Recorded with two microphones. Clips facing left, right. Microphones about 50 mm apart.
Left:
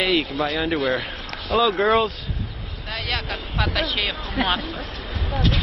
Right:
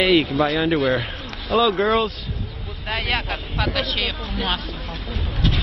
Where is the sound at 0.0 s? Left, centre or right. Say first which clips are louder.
Right 4 dB; centre.